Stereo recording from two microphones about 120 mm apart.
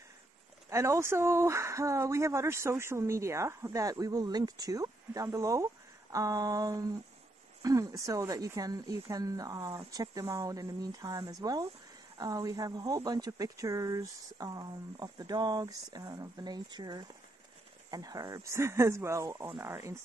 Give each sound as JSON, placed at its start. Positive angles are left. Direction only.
{"t": 0.7, "sound": "speech", "side_deg": -25}